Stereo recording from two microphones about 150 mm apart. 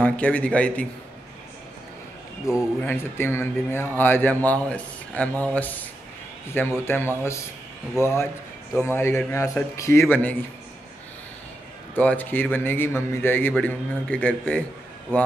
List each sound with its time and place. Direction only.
0.0 s speech: 10° left (ahead or behind)
2.5 s speech: 20° left (ahead or behind)
11.9 s speech: 10° left (ahead or behind)